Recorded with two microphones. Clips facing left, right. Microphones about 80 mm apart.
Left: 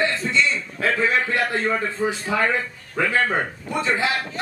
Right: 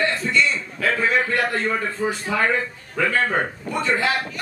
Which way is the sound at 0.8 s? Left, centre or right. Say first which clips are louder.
Even; left.